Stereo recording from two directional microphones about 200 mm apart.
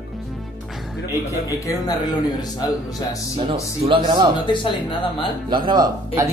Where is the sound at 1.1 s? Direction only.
15° left (ahead or behind).